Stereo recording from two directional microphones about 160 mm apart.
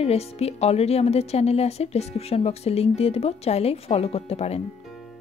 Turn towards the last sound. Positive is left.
turn(degrees=40)  # may be behind; listen again after turning